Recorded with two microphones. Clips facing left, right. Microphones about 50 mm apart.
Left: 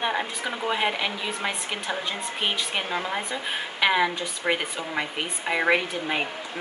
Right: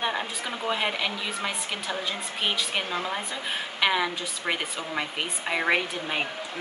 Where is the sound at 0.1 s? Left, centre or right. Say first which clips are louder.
Left 3 dB; centre.